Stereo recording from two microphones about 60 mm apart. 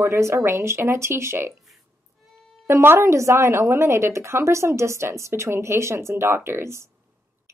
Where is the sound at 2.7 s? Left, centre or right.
Right.